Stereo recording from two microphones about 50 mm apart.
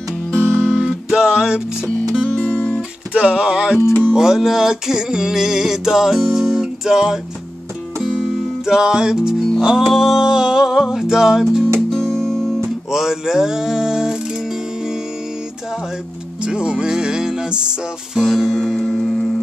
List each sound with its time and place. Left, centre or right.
0.5 s guitar: centre
1.1 s music: centre
2.2 s guitar: left
3.1 s music: right
11.9 s music: centre
12.9 s music: centre
16.4 s music: centre